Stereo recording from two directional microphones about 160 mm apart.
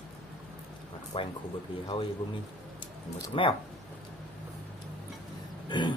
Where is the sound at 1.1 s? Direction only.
35° left (ahead or behind).